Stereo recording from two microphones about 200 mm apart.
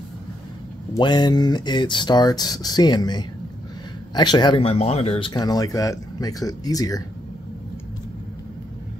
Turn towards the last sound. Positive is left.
turn(degrees=15)  # may be behind; listen again after turning